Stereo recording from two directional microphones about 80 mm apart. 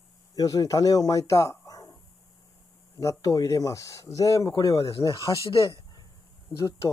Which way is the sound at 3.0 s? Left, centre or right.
Left.